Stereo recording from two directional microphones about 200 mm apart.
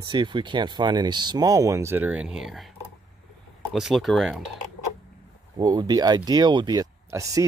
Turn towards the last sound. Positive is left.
turn(degrees=-15)  # may be behind; listen again after turning